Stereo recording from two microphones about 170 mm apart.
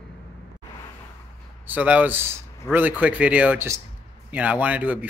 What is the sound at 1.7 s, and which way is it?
Speech, 10° right (ahead or behind).